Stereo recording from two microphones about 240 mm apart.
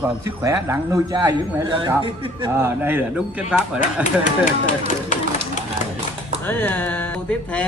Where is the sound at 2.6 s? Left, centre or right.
Centre.